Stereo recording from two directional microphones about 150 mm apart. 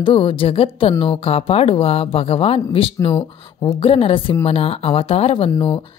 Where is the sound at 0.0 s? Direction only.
35° left (ahead or behind).